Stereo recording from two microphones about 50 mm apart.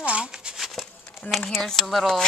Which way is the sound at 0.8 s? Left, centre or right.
Centre.